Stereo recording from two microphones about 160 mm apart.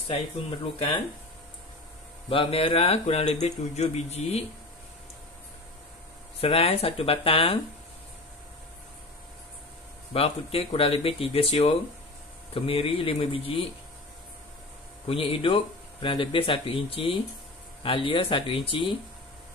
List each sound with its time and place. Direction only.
0.7 s speech: 35° left (ahead or behind)
2.2 s speech: 35° left (ahead or behind)
6.4 s speech: 35° left (ahead or behind)
10.1 s speech: 35° left (ahead or behind)
12.5 s speech: 35° left (ahead or behind)
15.0 s speech: 35° left (ahead or behind)